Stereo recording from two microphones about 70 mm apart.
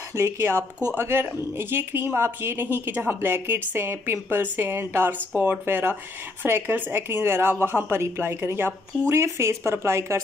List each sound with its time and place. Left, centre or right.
0.1 s speech: right
9.1 s speech: right